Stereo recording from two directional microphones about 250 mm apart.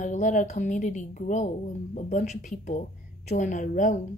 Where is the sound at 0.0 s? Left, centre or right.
Left.